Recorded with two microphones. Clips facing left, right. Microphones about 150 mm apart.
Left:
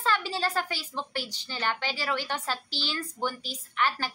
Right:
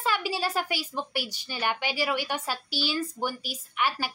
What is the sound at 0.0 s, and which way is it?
A woman's voice, 10° right (ahead or behind).